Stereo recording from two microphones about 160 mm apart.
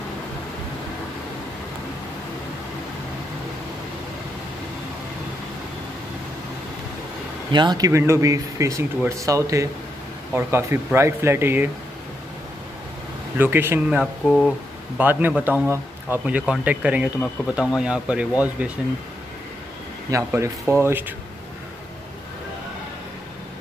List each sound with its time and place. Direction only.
7.5 s speech: 25° right (ahead or behind)
13.4 s speech: 15° right (ahead or behind)
14.2 s speech: centre (ahead or behind)
15.0 s speech: 10° right (ahead or behind)
20.1 s speech: 15° right (ahead or behind)